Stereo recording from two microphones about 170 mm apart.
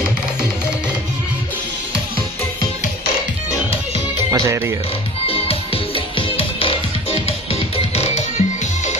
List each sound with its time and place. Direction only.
4.3 s speech: 15° right (ahead or behind)
5.2 s music: 35° left (ahead or behind)